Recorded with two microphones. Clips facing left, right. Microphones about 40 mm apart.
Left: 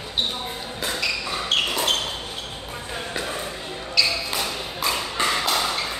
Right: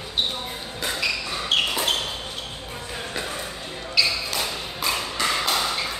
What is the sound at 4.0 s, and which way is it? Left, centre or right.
Basketball bounce, centre.